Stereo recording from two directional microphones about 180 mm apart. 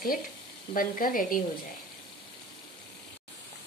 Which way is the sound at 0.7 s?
50° left (ahead or behind).